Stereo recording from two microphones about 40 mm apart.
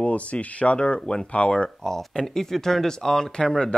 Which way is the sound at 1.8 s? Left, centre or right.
Centre.